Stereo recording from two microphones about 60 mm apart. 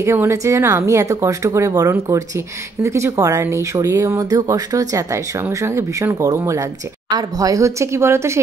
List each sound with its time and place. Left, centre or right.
0.0 s speech: right
4.2 s speech: right
5.5 s speech: right
7.2 s speech: right